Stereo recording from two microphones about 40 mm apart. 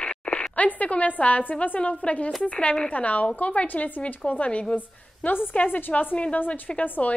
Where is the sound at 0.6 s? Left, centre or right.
Left.